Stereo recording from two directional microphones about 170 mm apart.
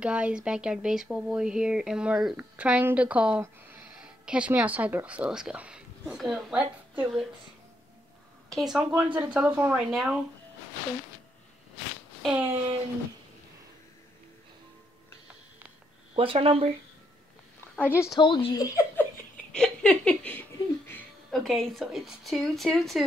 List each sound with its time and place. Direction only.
0.0 s speech: 5° right (ahead or behind)
8.5 s speech: centre (ahead or behind)
12.2 s a sound: 5° right (ahead or behind)
16.2 s speech: 30° right (ahead or behind)
17.6 s a woman's voice: 10° left (ahead or behind)
18.2 s speech: 30° left (ahead or behind)
19.5 s a sound: 5° left (ahead or behind)
21.3 s speech: centre (ahead or behind)